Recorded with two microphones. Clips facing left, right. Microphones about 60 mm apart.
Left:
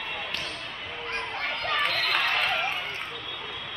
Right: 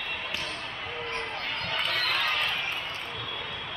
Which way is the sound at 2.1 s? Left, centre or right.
Left.